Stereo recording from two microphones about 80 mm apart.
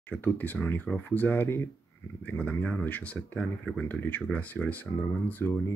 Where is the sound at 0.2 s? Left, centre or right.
Left.